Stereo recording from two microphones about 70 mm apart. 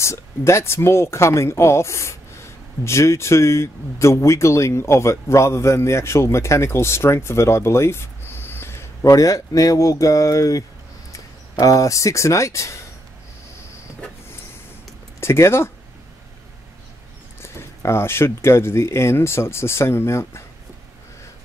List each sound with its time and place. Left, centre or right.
0.0 s speech: left
11.6 s speech: left
15.1 s speech: left
17.4 s speech: left